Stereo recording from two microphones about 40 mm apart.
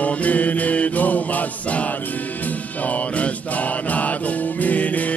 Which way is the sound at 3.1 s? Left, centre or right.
Left.